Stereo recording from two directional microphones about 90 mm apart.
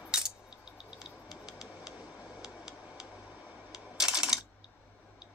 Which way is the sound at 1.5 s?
5° right (ahead or behind).